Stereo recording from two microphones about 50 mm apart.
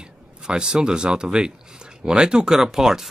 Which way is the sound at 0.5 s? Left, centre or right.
Centre.